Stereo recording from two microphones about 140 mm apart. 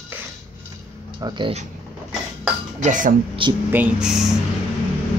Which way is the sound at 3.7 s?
10° right (ahead or behind).